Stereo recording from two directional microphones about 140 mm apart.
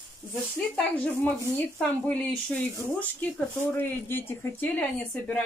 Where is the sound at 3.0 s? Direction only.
10° left (ahead or behind).